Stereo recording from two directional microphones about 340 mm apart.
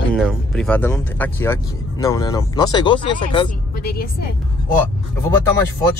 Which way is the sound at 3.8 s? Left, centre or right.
Left.